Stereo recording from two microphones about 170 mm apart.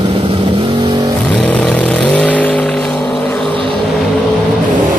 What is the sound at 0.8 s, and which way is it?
Vehicle, 25° right (ahead or behind).